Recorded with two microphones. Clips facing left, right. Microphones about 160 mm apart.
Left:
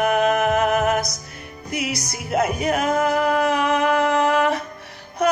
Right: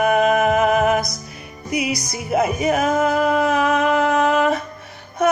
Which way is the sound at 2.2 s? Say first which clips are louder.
Right 2 dB; 5° right (ahead or behind).